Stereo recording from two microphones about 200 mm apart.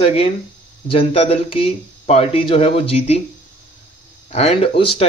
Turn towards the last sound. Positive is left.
turn(degrees=30)  # may be behind; listen again after turning